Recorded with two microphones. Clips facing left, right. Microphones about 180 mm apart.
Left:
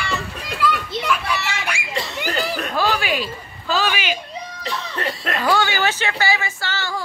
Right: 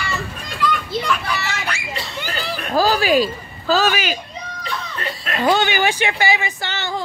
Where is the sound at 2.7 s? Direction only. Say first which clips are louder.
Right 8 dB; 35° right (ahead or behind).